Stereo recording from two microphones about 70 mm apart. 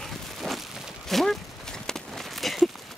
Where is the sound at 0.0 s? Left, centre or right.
Centre.